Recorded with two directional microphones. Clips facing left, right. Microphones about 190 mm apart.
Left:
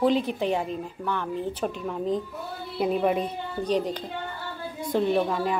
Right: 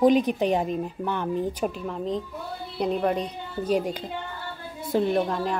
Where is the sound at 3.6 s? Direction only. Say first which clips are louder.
Right 1 dB; 10° right (ahead or behind).